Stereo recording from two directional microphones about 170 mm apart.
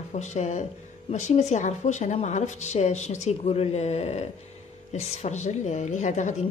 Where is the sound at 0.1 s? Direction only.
45° left (ahead or behind).